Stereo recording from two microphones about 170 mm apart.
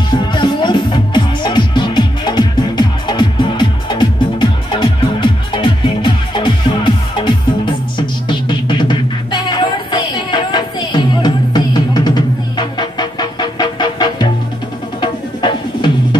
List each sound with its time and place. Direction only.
0.1 s music: 25° left (ahead or behind)